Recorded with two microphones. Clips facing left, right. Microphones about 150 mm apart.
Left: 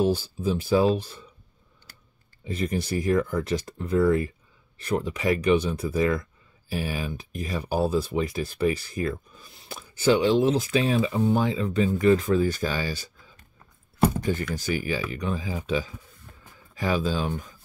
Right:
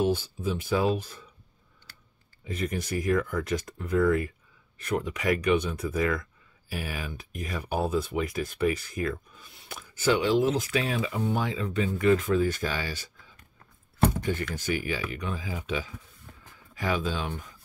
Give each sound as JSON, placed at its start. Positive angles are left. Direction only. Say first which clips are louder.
{"t": 0.0, "sound": "speech", "louder": "left 3 dB", "side_deg": 35}
{"t": 2.4, "sound": "speech", "louder": "left 3 dB", "side_deg": 30}
{"t": 14.5, "sound": "speech", "louder": "left 3 dB", "side_deg": 35}